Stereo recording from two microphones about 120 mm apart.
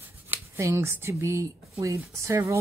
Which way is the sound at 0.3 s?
25° right (ahead or behind).